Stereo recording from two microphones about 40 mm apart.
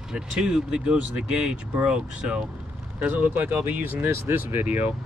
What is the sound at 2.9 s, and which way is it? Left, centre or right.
Speech, right.